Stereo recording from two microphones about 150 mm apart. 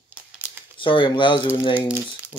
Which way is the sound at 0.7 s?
35° left (ahead or behind).